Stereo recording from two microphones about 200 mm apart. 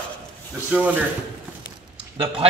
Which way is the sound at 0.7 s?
5° right (ahead or behind).